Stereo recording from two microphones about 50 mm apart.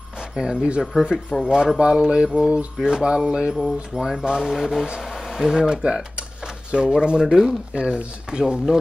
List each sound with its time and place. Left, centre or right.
0.4 s speech: centre
1.8 s mantra: centre
2.3 s speech: centre
3.3 s mantra: centre
3.9 s speech: centre
7.7 s speech: right